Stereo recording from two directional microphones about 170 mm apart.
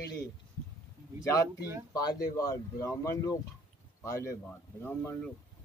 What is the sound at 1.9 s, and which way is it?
Speech, 20° left (ahead or behind).